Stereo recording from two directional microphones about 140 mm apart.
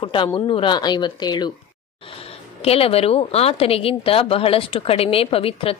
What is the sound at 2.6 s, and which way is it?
Speech, 45° left (ahead or behind).